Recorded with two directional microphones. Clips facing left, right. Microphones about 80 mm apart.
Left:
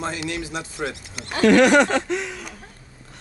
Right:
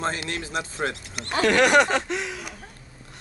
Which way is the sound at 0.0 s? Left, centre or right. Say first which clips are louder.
Left 1 dB; right.